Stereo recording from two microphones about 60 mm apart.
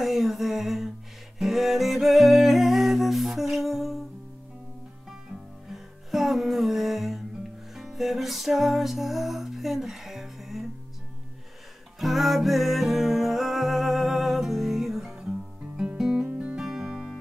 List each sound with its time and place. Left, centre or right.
0.0 s a sound: centre
1.4 s humming: centre
5.7 s music: centre
12.0 s music: centre